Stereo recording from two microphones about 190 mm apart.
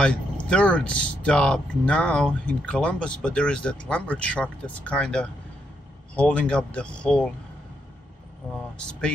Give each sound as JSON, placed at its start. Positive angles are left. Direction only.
{"t": 0.0, "sound": "speech", "side_deg": 5}